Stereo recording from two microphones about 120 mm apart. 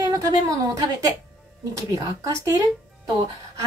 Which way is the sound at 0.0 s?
30° right (ahead or behind).